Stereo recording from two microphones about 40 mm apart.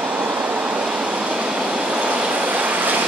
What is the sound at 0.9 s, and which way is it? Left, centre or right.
Vehicle, right.